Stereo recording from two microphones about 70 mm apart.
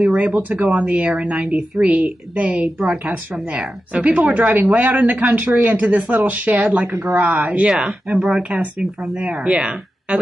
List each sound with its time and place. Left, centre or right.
0.1 s a woman's voice: right